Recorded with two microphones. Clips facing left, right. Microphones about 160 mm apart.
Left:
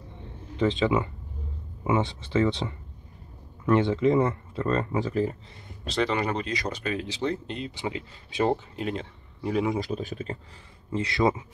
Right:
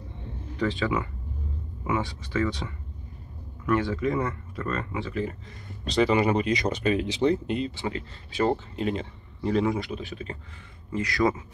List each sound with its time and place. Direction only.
0.6 s speech: 20° left (ahead or behind); by 5.3 s 40° left (ahead or behind)
5.9 s speech: 5° right (ahead or behind)
7.7 s speech: 15° left (ahead or behind)
8.7 s speech: centre (ahead or behind)
9.8 s speech: 40° left (ahead or behind)
10.9 s speech: 25° left (ahead or behind)